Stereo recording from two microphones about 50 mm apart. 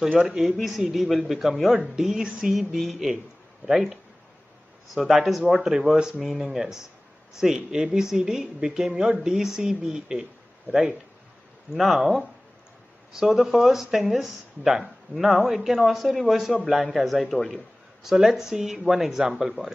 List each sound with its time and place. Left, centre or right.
0.3 s speech: centre
2.2 s a sound: centre
2.5 s speech: centre
6.1 s speech: centre
6.5 s speech: centre
18.0 s speech: centre